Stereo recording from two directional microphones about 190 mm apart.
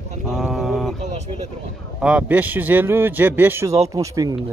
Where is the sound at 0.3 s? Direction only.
Centre (ahead or behind).